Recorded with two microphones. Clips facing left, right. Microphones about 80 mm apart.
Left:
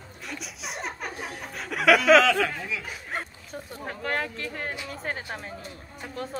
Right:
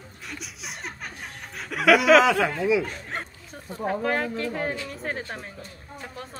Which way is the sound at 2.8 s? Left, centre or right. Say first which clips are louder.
Right 2 dB; centre.